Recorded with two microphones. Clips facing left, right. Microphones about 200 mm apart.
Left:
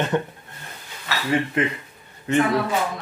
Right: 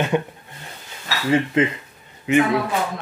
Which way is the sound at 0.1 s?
10° right (ahead or behind).